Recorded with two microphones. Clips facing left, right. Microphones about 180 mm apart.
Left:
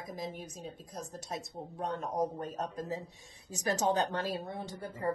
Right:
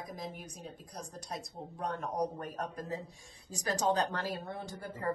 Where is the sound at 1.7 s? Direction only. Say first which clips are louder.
Left 1 dB; 25° left (ahead or behind).